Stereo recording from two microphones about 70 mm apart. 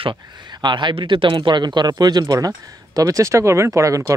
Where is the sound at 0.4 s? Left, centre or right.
Right.